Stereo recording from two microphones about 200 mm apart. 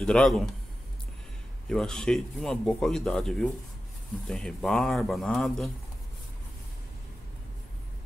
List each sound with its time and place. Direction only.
0.0 s speech: 5° left (ahead or behind)
1.7 s speech: 5° left (ahead or behind)